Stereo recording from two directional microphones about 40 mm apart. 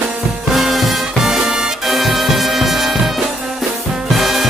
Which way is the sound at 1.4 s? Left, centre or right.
Centre.